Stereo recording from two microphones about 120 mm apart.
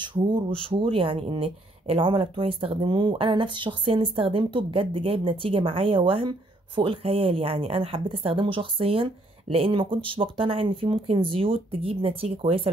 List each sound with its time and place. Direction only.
0.0 s speech: 40° right (ahead or behind)